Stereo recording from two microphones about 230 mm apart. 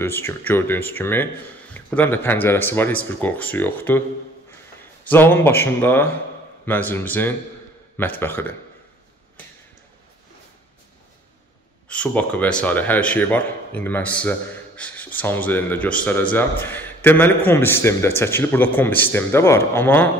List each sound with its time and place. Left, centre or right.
0.0 s speech: centre
5.0 s speech: centre
11.9 s speech: centre